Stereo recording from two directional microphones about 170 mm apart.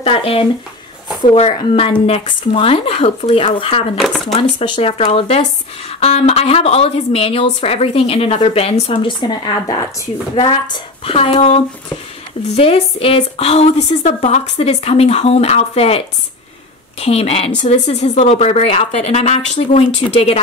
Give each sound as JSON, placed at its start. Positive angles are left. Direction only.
{"t": 0.0, "sound": "a woman's voice", "side_deg": 35}
{"t": 4.0, "sound": "speech", "side_deg": 0}
{"t": 4.4, "sound": "a woman's voice", "side_deg": 30}
{"t": 10.3, "sound": "a woman's voice", "side_deg": 30}
{"t": 17.0, "sound": "a woman's voice", "side_deg": 40}